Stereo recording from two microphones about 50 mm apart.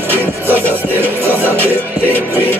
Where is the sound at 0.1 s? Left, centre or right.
Right.